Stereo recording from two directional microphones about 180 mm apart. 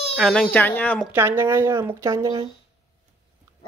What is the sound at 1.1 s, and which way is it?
Speech, 15° right (ahead or behind).